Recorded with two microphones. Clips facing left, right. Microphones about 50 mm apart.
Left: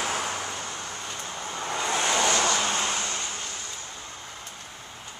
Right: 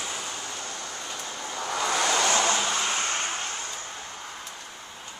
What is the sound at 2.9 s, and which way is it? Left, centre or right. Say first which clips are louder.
Vehicle: right 3 dB; right.